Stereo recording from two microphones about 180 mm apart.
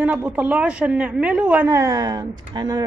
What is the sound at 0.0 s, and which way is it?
A man's voice, 5° right (ahead or behind).